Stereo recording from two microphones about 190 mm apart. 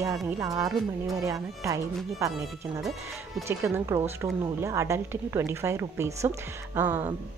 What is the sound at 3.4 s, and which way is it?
A woman's voice, 15° right (ahead or behind).